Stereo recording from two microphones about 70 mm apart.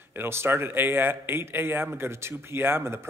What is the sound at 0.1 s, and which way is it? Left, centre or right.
A man's voice, right.